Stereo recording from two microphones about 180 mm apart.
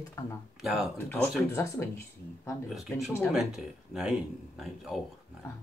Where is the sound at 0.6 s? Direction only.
Centre (ahead or behind).